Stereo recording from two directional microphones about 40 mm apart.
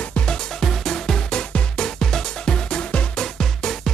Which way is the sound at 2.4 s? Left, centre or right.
Left.